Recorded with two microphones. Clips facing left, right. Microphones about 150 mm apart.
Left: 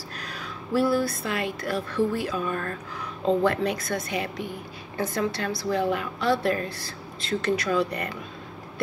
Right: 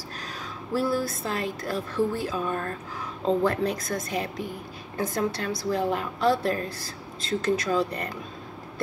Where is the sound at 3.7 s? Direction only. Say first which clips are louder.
Left 1 dB; 60° left (ahead or behind).